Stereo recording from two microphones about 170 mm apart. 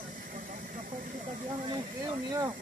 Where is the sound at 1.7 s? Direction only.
25° right (ahead or behind).